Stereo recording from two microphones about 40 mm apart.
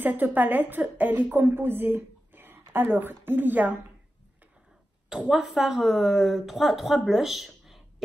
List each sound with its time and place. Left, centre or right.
0.0 s a woman's voice: right
5.3 s speech: centre